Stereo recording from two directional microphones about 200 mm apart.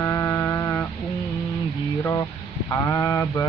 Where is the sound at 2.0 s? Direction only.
15° left (ahead or behind).